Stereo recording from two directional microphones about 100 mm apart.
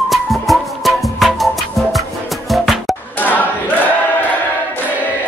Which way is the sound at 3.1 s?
15° left (ahead or behind).